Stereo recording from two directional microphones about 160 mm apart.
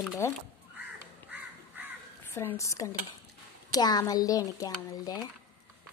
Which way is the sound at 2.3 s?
15° left (ahead or behind).